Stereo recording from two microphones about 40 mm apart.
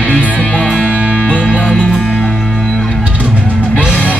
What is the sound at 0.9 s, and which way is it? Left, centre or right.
Music, right.